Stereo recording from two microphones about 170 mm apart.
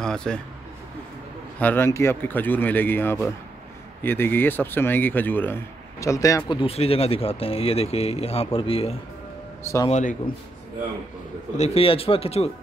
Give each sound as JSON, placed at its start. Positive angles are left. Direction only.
{"t": 0.0, "sound": "speech", "side_deg": 5}
{"t": 1.6, "sound": "speech", "side_deg": 10}
{"t": 6.6, "sound": "speech", "side_deg": 35}
{"t": 9.8, "sound": "a man's voice", "side_deg": 45}
{"t": 11.5, "sound": "speech", "side_deg": 40}